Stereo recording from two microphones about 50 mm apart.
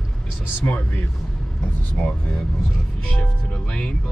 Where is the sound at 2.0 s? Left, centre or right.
Left.